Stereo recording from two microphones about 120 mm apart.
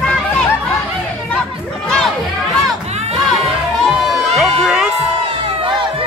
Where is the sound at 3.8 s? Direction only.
Centre (ahead or behind).